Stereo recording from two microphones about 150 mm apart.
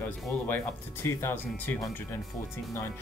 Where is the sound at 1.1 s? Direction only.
15° left (ahead or behind).